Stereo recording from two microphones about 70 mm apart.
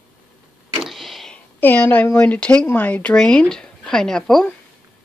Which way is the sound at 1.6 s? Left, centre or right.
Left.